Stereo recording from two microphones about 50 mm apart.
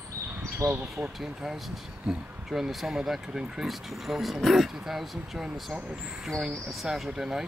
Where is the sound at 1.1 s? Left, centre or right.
Centre.